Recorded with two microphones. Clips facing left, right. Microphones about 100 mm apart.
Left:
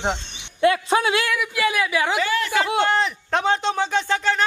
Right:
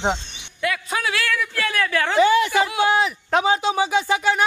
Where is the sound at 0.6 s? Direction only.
30° left (ahead or behind); by 2.2 s 10° left (ahead or behind).